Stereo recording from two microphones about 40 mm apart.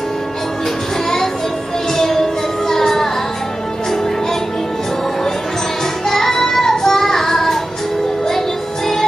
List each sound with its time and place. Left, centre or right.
2.0 s music: centre
6.0 s child singing: centre